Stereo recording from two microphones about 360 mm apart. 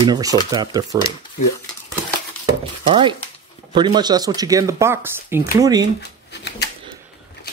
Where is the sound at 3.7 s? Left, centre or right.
Centre.